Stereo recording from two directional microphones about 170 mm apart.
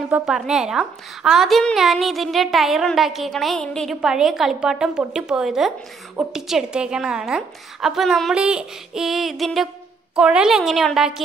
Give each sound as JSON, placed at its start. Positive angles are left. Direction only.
{"t": 0.1, "sound": "a woman's voice", "side_deg": -5}